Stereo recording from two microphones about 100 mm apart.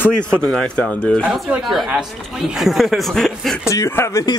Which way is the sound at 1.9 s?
5° right (ahead or behind).